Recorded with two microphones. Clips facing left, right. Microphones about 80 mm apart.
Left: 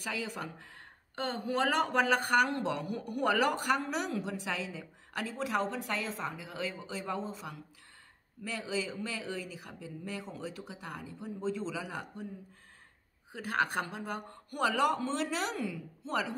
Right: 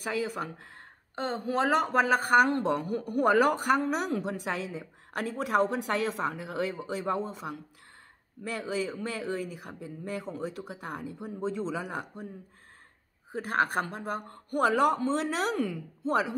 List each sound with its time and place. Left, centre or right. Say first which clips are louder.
0.0 s speech: right 6 dB; right
0.4 s speech: right 5 dB; right
13.3 s speech: right 4 dB; right